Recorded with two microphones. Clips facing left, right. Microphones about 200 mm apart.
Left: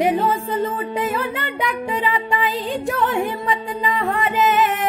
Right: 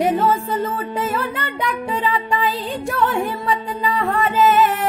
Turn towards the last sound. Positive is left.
turn(degrees=15)  # may be behind; listen again after turning